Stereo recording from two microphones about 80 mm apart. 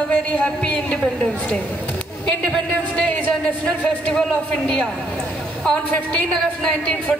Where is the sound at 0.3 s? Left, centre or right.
Centre.